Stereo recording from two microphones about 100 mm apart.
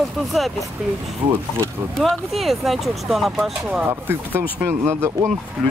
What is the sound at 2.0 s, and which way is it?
Speech, centre (ahead or behind).